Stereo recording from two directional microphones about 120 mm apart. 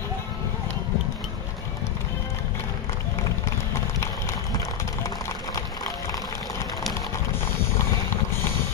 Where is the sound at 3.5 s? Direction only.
25° left (ahead or behind).